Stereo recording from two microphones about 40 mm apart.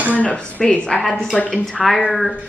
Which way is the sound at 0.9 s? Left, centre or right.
Left.